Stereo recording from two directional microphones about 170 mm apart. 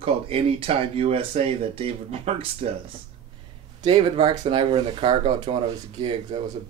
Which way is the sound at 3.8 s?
35° right (ahead or behind).